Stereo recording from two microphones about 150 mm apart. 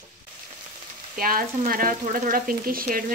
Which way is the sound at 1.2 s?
70° right (ahead or behind).